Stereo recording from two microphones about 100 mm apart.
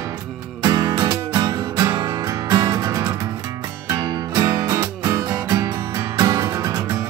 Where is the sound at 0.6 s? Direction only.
40° right (ahead or behind).